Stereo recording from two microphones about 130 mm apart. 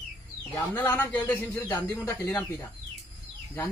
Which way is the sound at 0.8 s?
15° left (ahead or behind).